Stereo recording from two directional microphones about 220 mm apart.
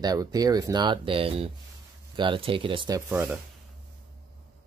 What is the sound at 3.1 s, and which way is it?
Speech, 10° right (ahead or behind).